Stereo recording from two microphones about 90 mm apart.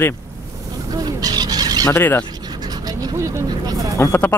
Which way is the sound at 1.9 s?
20° left (ahead or behind).